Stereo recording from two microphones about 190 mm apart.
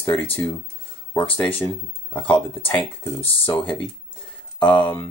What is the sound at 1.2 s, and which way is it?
Speech, 30° left (ahead or behind).